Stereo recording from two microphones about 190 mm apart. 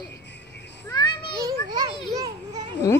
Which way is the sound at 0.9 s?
20° left (ahead or behind).